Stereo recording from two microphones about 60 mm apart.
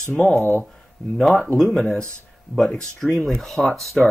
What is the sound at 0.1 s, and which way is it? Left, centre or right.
Speech, centre.